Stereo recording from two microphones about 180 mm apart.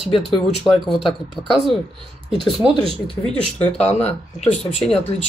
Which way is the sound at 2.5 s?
Centre (ahead or behind).